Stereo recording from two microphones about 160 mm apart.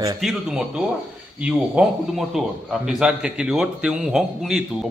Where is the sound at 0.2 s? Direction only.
5° right (ahead or behind).